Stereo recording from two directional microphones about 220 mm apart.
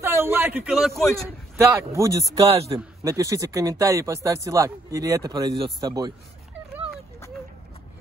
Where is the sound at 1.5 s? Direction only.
15° right (ahead or behind).